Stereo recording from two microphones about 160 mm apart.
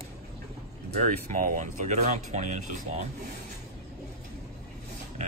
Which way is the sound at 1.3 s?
55° right (ahead or behind).